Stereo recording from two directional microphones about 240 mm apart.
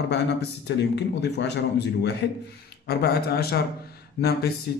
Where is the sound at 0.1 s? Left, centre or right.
Left.